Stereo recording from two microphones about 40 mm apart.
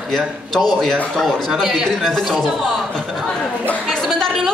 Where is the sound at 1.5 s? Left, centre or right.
Centre.